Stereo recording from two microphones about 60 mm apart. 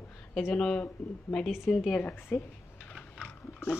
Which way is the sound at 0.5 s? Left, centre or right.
Centre.